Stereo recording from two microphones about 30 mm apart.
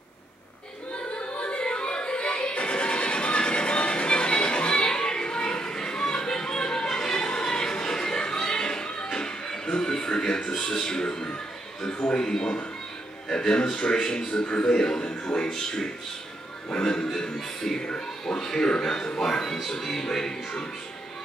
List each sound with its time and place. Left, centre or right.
1.3 s music: left
11.8 s a man's voice: left
16.7 s a man's voice: left
17.6 s music: centre
18.2 s a man's voice: centre
18.8 s music: centre